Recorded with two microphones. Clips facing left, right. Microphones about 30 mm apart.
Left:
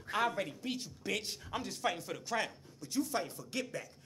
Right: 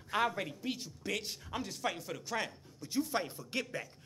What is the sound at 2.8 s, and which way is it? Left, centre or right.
Speech, centre.